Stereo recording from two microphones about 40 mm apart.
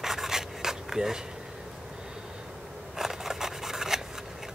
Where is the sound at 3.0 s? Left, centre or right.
Centre.